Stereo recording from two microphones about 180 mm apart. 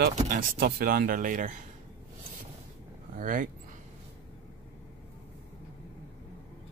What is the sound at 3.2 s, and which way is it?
Speech, 45° right (ahead or behind).